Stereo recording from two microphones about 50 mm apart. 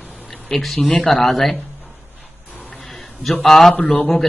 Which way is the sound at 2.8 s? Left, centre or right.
Centre.